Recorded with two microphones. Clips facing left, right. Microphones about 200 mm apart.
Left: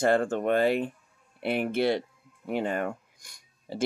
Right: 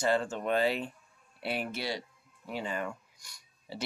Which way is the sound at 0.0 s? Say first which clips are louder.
Left 6 dB; 55° left (ahead or behind).